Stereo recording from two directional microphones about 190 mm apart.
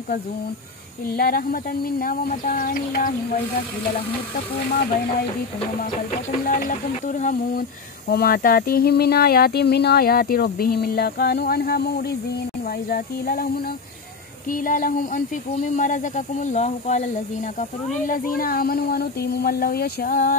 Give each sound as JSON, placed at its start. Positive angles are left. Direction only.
{"t": 1.1, "sound": "speech", "side_deg": 50}
{"t": 6.4, "sound": "speech", "side_deg": 45}
{"t": 8.1, "sound": "a sound", "side_deg": 55}
{"t": 12.9, "sound": "speech", "side_deg": 50}
{"t": 14.5, "sound": "speech", "side_deg": 45}